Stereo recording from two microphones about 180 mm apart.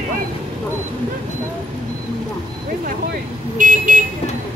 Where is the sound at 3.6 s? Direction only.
45° right (ahead or behind).